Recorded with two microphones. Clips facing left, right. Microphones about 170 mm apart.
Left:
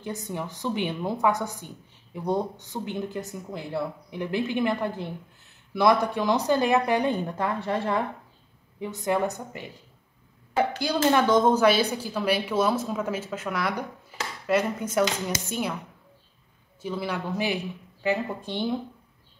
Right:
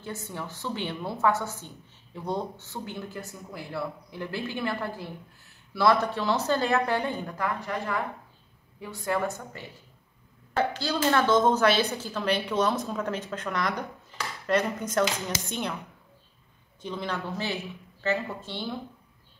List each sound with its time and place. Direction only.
0.0 s speech: 15° left (ahead or behind)
16.8 s speech: 10° left (ahead or behind)